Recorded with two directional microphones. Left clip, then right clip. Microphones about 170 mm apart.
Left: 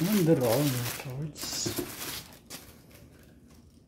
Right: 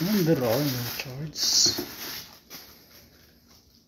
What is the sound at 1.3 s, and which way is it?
Speech, 35° left (ahead or behind).